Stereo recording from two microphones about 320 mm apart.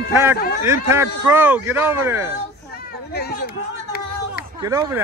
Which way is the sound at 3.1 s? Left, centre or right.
Left.